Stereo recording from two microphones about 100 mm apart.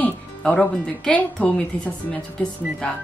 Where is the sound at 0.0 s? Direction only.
10° left (ahead or behind).